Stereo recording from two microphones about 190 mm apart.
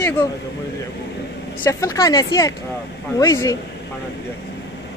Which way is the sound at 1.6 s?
15° left (ahead or behind).